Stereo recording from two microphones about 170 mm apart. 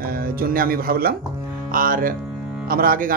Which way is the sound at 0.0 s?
60° right (ahead or behind).